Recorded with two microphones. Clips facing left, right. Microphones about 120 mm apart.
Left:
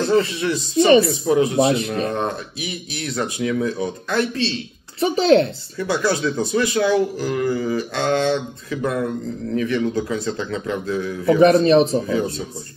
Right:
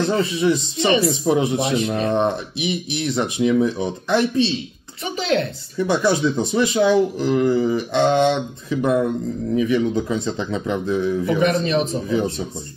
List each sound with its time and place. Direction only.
0.0 s speech: 20° right (ahead or behind)
1.6 s a man's voice: 35° left (ahead or behind)
1.9 s speech: 25° right (ahead or behind)
5.0 s a man's voice: 35° left (ahead or behind)
5.8 s speech: 20° right (ahead or behind)
9.9 s speech: 20° right (ahead or behind)
11.3 s a man's voice: 35° left (ahead or behind)
12.1 s speech: 20° right (ahead or behind)